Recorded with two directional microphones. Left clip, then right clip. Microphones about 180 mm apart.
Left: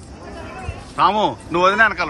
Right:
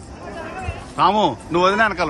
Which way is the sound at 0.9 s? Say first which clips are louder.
Even; 5° right (ahead or behind).